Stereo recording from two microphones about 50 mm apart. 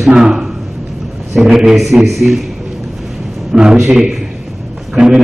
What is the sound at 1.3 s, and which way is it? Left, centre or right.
A man's voice, centre.